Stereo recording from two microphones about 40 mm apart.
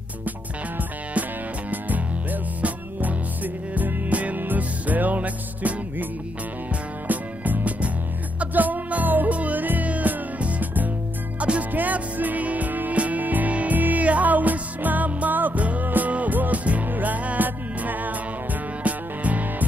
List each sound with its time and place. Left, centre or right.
2.6 s music: right
7.1 s music: right
11.3 s music: right
11.7 s music: right